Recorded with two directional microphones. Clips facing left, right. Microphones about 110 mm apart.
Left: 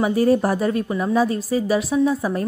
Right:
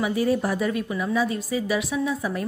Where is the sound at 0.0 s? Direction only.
45° left (ahead or behind).